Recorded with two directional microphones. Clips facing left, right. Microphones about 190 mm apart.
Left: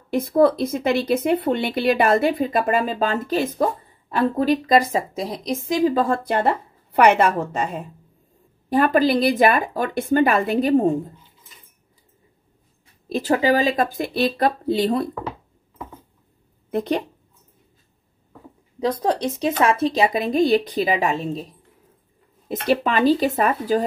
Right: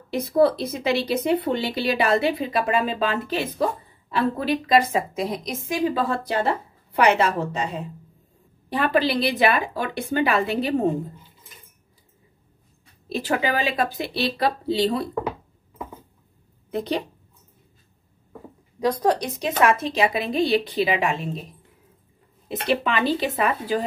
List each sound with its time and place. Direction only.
0.1 s a woman's voice: 50° left (ahead or behind)
13.1 s speech: 40° left (ahead or behind)
16.7 s speech: 50° left (ahead or behind)
19.1 s a woman's voice: 30° left (ahead or behind)
22.5 s speech: 40° left (ahead or behind)